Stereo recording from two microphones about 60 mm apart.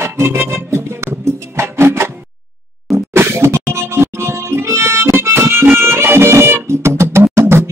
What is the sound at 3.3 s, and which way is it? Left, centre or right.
Music, right.